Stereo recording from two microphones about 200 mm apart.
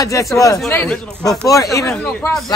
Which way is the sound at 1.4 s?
15° left (ahead or behind).